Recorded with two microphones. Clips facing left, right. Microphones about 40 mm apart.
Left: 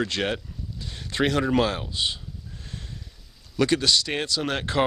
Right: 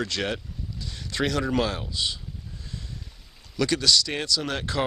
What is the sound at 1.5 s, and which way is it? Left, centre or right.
Speech, left.